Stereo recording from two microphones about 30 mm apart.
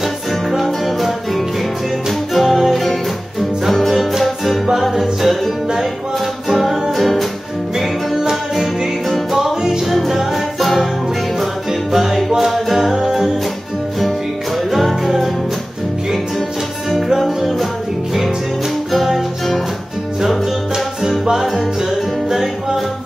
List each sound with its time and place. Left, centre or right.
0.8 s music: centre
4.9 s music: centre
6.5 s music: centre
9.4 s music: centre
10.0 s music: centre
12.0 s music: centre
14.7 s music: centre
18.9 s music: centre